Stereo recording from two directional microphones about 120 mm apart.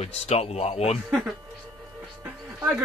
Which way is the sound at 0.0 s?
60° left (ahead or behind).